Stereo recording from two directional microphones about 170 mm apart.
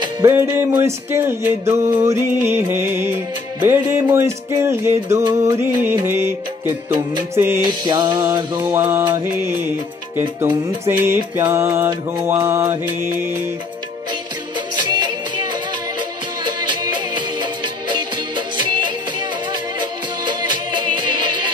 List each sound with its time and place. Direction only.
0.0 s music: 15° right (ahead or behind)
7.8 s music: 25° right (ahead or behind)
10.9 s music: 15° right (ahead or behind)
14.8 s music: 25° right (ahead or behind)
16.4 s music: 25° right (ahead or behind)
20.8 s music: 25° right (ahead or behind)